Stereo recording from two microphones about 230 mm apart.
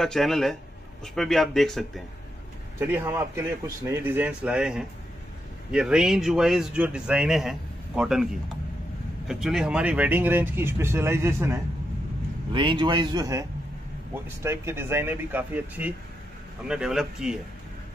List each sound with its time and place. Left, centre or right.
0.0 s speech: centre
2.8 s speech: centre
9.3 s a man's voice: centre